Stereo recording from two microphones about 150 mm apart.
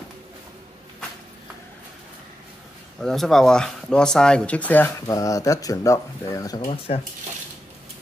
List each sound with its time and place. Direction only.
3.0 s speech: centre (ahead or behind)
5.0 s speech: 20° left (ahead or behind)